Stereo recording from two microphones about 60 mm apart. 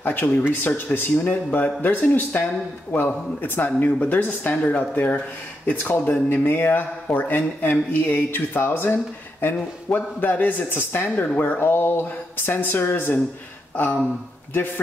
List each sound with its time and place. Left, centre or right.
0.0 s speech: left